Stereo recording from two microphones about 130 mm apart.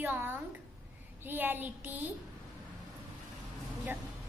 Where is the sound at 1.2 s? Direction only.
15° right (ahead or behind).